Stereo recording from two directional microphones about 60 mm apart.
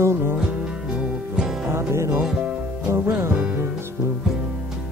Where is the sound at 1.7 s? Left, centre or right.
Right.